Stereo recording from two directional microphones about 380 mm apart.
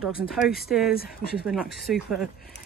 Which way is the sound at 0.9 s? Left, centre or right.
Left.